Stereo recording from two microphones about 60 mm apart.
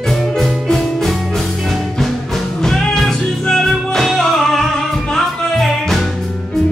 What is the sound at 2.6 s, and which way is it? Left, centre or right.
Music, centre.